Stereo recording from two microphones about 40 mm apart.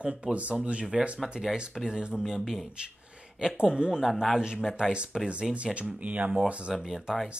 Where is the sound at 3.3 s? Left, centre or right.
Centre.